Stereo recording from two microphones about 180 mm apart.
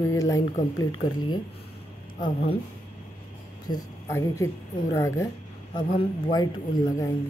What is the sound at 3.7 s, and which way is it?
A woman's voice, 15° left (ahead or behind).